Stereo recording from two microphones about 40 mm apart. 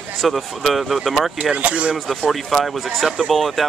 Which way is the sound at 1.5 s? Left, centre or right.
Right.